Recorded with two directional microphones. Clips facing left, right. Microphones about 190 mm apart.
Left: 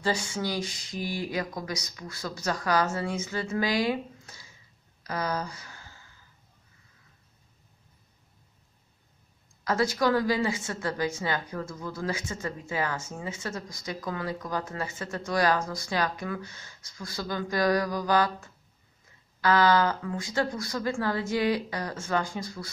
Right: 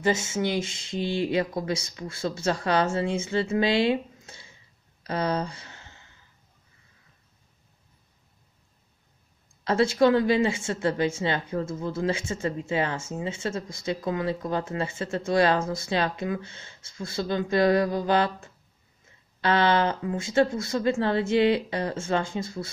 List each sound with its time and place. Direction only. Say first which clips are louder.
0.0 s a woman's voice: right 4 dB; 25° right (ahead or behind)
5.0 s a sound: right 4 dB; 30° right (ahead or behind)
9.7 s a woman's voice: right 5 dB; 25° right (ahead or behind)
19.4 s a woman's voice: even; 25° right (ahead or behind)